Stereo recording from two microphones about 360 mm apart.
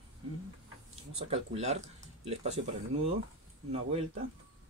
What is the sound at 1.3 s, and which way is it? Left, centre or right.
Speech, centre.